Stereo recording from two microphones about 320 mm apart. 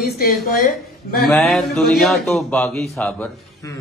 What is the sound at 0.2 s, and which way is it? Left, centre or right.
Speech, left.